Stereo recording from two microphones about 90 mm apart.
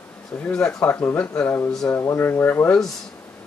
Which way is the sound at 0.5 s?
10° left (ahead or behind).